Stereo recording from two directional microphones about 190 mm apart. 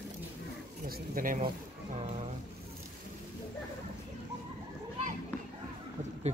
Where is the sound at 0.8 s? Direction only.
45° right (ahead or behind).